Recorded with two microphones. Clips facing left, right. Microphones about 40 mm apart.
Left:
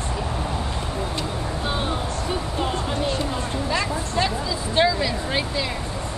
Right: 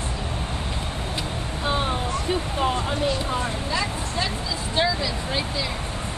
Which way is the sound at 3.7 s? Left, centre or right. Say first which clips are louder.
Left 4 dB; left.